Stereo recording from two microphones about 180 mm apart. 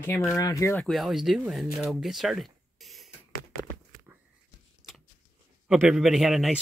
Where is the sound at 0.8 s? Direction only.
Centre (ahead or behind).